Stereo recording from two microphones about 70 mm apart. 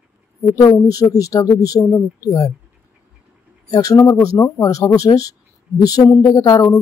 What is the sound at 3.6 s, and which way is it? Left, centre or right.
Speech, left.